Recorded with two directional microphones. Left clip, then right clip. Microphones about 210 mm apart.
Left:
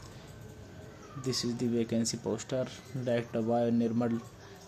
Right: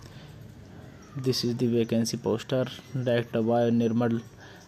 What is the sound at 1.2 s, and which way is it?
Speech, 20° right (ahead or behind).